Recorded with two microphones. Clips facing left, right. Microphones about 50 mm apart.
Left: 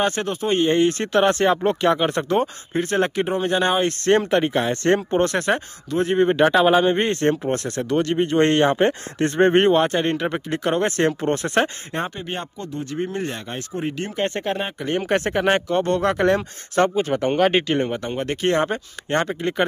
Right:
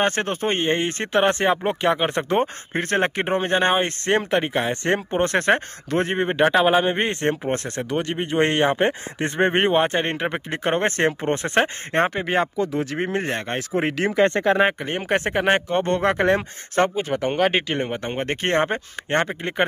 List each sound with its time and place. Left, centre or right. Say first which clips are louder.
0.0 s speech: even; right
2.4 s speech: left 1 dB; right
4.1 s speech: left 3 dB; centre
5.5 s speech: right 2 dB; right
7.9 s speech: left 5 dB; centre; by 11.1 s right
11.1 s speech: even; right
11.9 s speech: right 6 dB; right
12.7 s speech: right 2 dB; right
14.9 s speech: left 2 dB; right
16.9 s speech: left 3 dB; centre
18.0 s speech: left 2 dB; right